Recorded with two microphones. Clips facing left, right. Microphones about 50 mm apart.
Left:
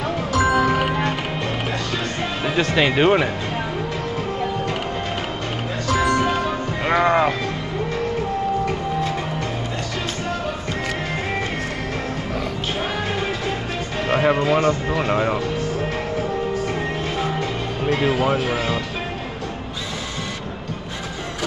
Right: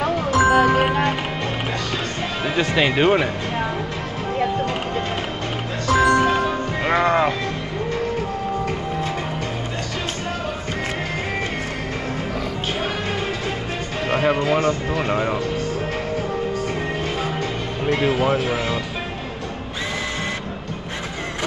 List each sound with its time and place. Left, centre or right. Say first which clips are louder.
0.3 s music: right 2 dB; centre
2.4 s speech: even; centre
5.9 s music: right 3 dB; centre
14.0 s speech: left 1 dB; centre
17.8 s speech: even; centre